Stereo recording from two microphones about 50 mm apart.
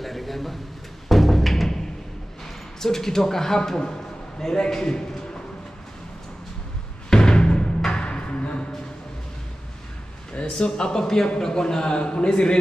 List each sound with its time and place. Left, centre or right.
0.0 s a sound: centre
1.0 s music: centre
2.8 s a man's voice: centre
7.1 s music: centre
10.3 s a man's voice: left